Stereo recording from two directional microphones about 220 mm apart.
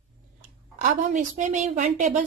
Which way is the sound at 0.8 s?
35° right (ahead or behind).